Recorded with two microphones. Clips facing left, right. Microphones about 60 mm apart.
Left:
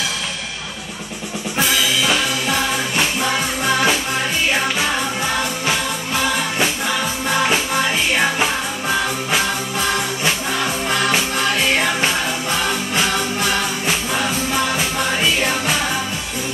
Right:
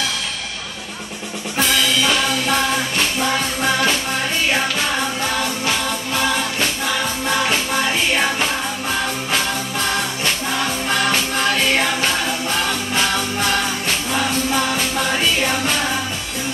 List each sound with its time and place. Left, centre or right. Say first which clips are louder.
1.6 s music: right 1 dB; centre
7.2 s music: left 2 dB; centre
10.2 s music: left 1 dB; centre
13.8 s music: even; centre